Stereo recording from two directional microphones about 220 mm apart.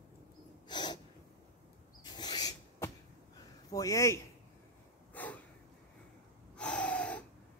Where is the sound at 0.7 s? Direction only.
20° left (ahead or behind).